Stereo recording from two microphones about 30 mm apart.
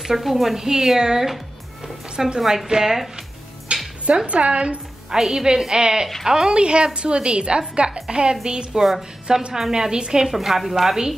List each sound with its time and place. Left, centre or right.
0.0 s a woman's voice: centre
0.6 s a woman's voice: centre
3.7 s music: right
4.3 s a woman's voice: right
5.2 s a woman's voice: right
6.5 s a woman's voice: right
9.5 s a woman's voice: centre
10.2 s a woman's voice: centre